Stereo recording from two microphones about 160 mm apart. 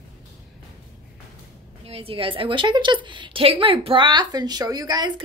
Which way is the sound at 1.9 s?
35° right (ahead or behind).